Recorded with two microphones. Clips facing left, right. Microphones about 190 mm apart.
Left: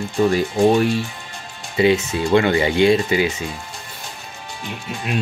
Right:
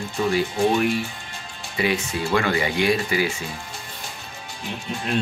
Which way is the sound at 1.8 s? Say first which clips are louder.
Left 7 dB; 25° left (ahead or behind).